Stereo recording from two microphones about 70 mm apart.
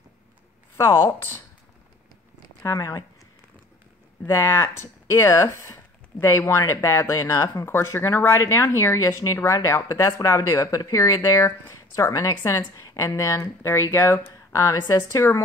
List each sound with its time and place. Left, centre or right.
0.7 s speech: left
2.6 s speech: left
4.3 s speech: left
7.6 s speech: left
11.1 s speech: left
13.9 s speech: left